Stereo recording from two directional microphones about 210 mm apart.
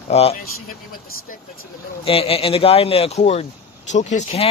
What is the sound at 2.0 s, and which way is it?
Speech, 25° left (ahead or behind).